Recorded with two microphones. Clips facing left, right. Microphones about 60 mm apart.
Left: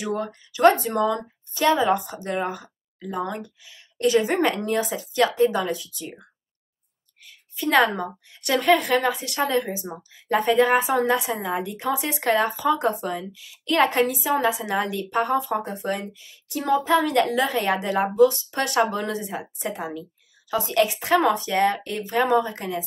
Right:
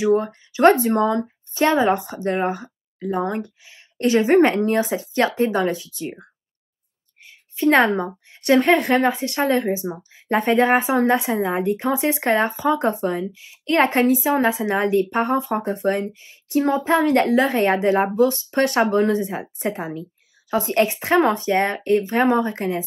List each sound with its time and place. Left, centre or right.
0.0 s a woman's voice: right
7.2 s a woman's voice: right